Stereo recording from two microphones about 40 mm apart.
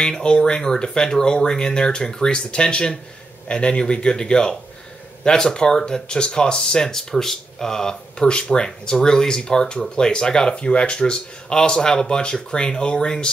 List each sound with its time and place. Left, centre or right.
0.0 s speech: left